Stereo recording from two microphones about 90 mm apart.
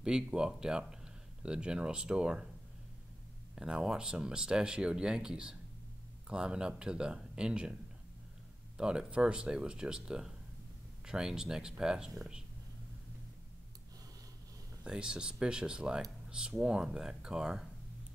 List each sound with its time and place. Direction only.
0.0 s speech: 5° right (ahead or behind)
3.5 s speech: 10° right (ahead or behind)
8.7 s speech: 10° right (ahead or behind)
14.8 s speech: 10° right (ahead or behind)